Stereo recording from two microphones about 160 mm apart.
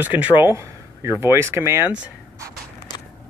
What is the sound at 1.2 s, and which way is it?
Speech, 15° right (ahead or behind).